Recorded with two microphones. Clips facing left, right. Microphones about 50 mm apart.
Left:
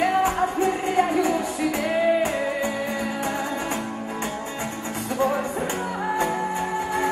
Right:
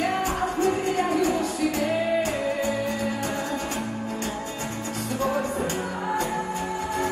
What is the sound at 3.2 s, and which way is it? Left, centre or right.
Music, left.